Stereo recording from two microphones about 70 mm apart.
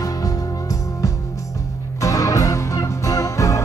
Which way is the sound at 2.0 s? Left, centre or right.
Left.